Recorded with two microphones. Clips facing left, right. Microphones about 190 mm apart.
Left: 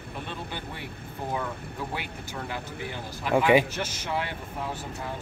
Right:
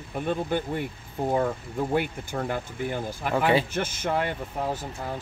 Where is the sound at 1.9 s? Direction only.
50° right (ahead or behind).